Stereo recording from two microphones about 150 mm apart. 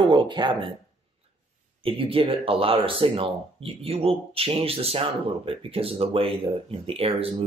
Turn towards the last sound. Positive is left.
turn(degrees=-40)  # may be behind; listen again after turning